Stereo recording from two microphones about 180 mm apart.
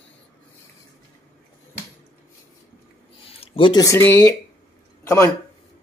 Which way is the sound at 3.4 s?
30° left (ahead or behind).